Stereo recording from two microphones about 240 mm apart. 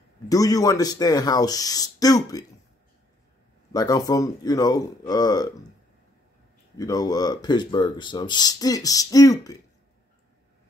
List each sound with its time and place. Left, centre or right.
0.3 s speech: centre
3.7 s speech: centre
6.8 s speech: centre